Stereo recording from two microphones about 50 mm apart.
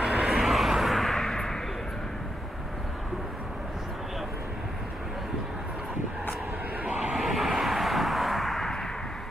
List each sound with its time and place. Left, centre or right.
0.0 s vehicle: centre
0.3 s vehicle: centre
7.0 s vehicle: centre